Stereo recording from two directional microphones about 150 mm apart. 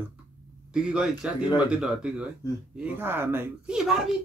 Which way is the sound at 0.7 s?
5° right (ahead or behind).